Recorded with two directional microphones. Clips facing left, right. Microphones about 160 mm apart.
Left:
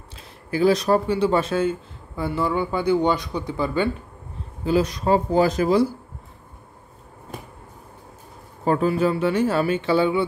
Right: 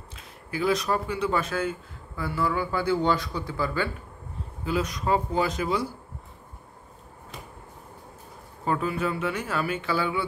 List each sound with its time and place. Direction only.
0.1 s speech: 35° left (ahead or behind)
4.6 s speech: 30° left (ahead or behind)
8.6 s speech: 35° left (ahead or behind)